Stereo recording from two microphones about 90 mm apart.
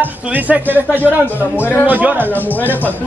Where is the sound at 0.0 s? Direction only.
20° right (ahead or behind).